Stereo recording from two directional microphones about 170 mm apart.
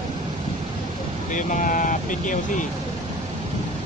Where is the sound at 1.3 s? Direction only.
50° left (ahead or behind).